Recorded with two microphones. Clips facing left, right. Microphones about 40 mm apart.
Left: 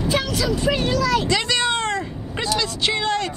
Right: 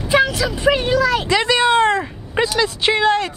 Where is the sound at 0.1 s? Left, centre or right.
Right.